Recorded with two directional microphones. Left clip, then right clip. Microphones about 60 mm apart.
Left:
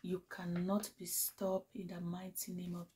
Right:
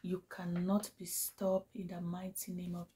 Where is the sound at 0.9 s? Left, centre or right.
Right.